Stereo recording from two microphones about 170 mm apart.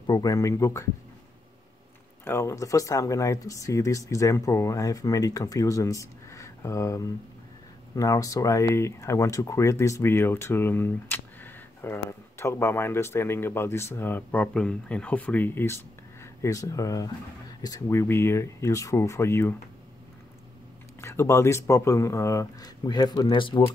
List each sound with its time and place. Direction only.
0.0 s speech: 20° left (ahead or behind)
2.2 s speech: 15° left (ahead or behind)
21.0 s speech: 15° left (ahead or behind)